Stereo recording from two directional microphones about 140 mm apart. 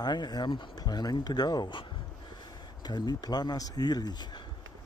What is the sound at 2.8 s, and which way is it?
Speech, 30° left (ahead or behind).